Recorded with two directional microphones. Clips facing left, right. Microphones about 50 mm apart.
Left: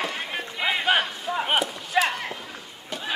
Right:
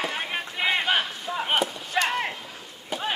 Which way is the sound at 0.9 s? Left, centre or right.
Centre.